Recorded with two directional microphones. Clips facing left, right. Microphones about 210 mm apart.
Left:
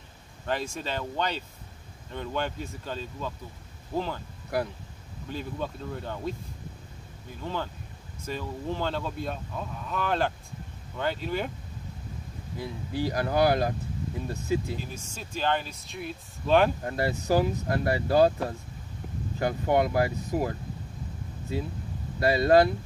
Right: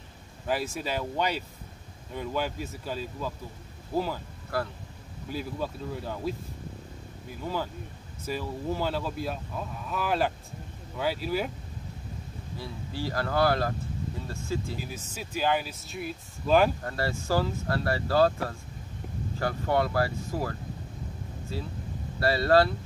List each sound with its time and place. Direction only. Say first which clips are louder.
0.7 s speech: right 1 dB; 10° right (ahead or behind)
4.5 s speech: left 2 dB; 20° left (ahead or behind)
5.3 s speech: right 1 dB; 5° right (ahead or behind)
7.4 s speech: right 1 dB; 5° right (ahead or behind)
12.5 s speech: left 5 dB; 15° left (ahead or behind)
15.1 s speech: right 1 dB; 10° right (ahead or behind)
16.8 s speech: left 3 dB; 20° left (ahead or behind)